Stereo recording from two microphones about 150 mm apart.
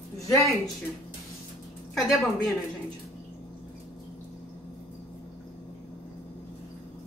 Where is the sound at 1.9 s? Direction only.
Centre (ahead or behind).